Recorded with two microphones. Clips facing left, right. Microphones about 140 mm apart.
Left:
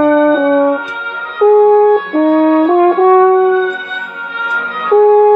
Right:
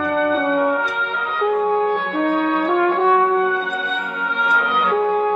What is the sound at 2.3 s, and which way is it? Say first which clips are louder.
French horn: left 11 dB; 45° left (ahead or behind).